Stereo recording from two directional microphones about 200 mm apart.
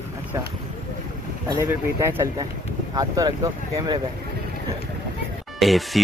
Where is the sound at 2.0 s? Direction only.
15° right (ahead or behind).